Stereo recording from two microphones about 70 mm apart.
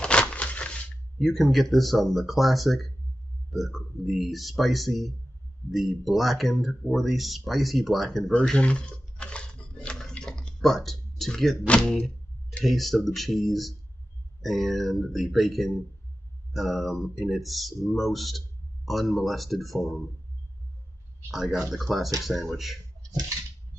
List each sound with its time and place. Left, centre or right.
0.0 s a sound: centre
1.2 s speech: centre
8.5 s chewing: centre
11.6 s speech: centre
11.9 s a sound: centre
12.6 s speech: centre
21.3 s speech: centre